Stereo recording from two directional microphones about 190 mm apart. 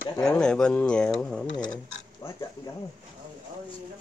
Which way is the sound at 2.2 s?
30° left (ahead or behind).